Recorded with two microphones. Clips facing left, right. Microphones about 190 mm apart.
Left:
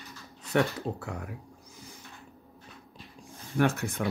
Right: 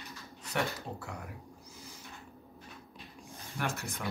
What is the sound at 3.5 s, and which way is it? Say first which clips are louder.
Speech: left 11 dB; 60° left (ahead or behind).